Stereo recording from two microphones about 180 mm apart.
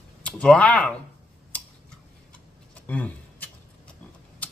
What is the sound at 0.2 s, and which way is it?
Speech, 5° left (ahead or behind).